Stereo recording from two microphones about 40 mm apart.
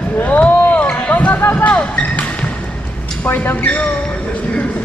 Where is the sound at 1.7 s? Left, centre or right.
Left.